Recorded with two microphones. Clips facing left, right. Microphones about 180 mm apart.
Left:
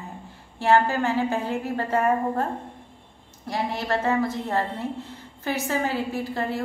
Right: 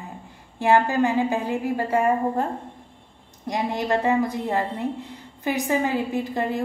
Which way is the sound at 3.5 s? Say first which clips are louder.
Right 3 dB; 20° right (ahead or behind).